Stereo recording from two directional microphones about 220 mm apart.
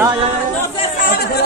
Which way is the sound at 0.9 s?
40° left (ahead or behind).